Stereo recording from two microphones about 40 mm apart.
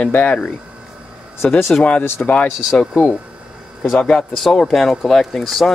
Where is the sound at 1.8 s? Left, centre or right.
Left.